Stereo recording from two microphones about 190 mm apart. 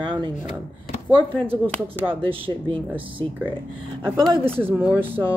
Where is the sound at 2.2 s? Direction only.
30° right (ahead or behind).